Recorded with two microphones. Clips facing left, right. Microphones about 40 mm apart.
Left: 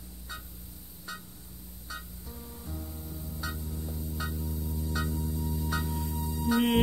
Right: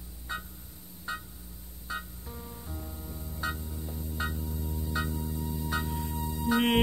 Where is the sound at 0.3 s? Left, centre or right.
Right.